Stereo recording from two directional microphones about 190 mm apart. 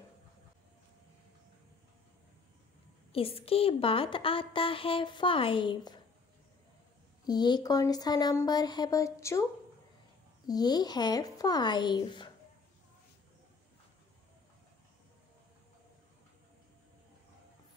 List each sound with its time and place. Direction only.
3.1 s a woman's voice: 30° left (ahead or behind)
7.2 s a woman's voice: 20° left (ahead or behind)